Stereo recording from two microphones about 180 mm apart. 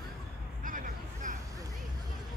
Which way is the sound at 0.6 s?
50° right (ahead or behind).